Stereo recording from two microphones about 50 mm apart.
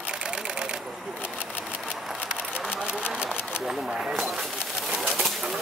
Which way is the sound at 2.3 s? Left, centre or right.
Centre.